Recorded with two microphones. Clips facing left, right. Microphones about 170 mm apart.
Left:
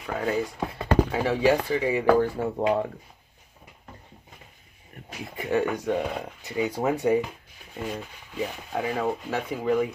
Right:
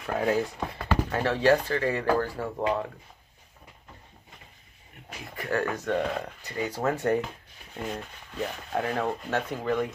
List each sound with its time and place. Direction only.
0.0 s speech: centre (ahead or behind); by 2.7 s 20° left (ahead or behind)
5.2 s speech: 20° left (ahead or behind)